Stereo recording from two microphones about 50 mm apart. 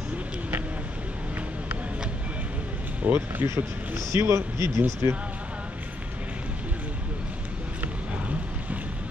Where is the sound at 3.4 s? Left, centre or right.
Right.